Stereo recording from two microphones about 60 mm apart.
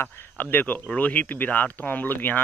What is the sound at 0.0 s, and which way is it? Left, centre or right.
Speech, left.